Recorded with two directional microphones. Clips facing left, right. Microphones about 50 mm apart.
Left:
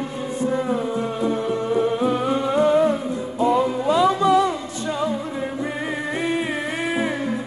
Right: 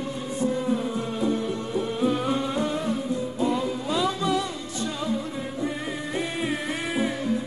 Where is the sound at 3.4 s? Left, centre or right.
Left.